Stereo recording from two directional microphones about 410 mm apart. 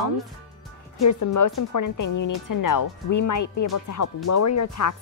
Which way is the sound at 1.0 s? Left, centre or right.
Left.